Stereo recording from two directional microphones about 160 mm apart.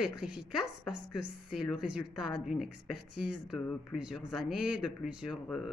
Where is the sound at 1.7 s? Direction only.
5° right (ahead or behind).